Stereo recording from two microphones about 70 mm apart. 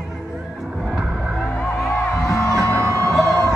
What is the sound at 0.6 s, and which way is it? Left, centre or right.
Music, centre.